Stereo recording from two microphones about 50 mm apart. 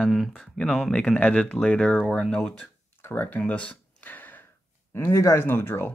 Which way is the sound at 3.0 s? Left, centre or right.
Left.